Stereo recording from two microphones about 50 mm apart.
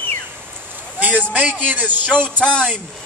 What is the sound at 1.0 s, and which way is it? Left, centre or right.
A man's voice, right.